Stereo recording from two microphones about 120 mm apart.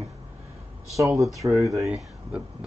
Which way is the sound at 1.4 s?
25° right (ahead or behind).